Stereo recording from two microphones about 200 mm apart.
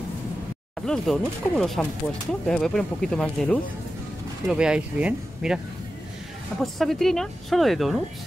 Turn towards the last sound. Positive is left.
turn(degrees=0)  # may be behind; listen again after turning